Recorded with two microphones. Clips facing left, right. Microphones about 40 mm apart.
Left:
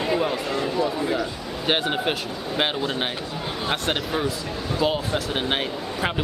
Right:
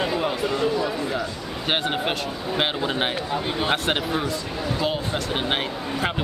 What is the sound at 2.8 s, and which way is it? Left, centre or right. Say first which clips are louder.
Speech: right 2 dB; centre.